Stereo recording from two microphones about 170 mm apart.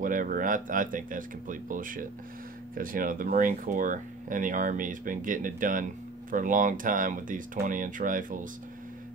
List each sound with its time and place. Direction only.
0.0 s speech: 50° right (ahead or behind)